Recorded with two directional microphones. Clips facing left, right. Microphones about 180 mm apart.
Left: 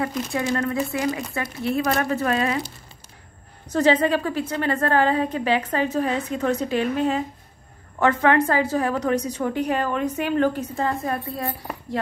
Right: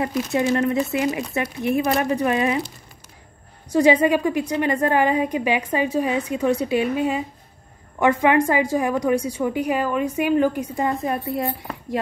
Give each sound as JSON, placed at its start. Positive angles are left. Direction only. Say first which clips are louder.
{"t": 0.0, "sound": "a woman's voice", "louder": "right 4 dB", "side_deg": -20}
{"t": 3.7, "sound": "a woman's voice", "louder": "right 3 dB", "side_deg": -10}